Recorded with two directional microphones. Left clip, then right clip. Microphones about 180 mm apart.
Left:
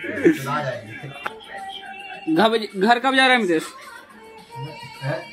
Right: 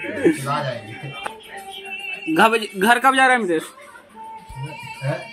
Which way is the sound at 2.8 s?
5° right (ahead or behind).